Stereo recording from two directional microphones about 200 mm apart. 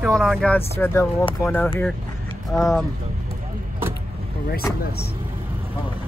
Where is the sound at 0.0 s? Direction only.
Centre (ahead or behind).